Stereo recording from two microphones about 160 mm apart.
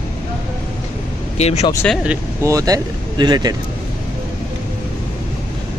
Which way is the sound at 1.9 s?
5° right (ahead or behind).